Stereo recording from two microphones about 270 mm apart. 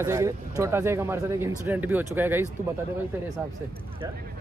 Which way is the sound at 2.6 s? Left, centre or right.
Right.